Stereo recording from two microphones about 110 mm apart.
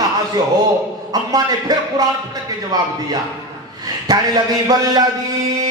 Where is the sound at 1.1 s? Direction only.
35° right (ahead or behind).